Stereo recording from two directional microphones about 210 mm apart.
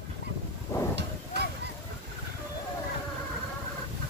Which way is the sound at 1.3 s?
55° right (ahead or behind).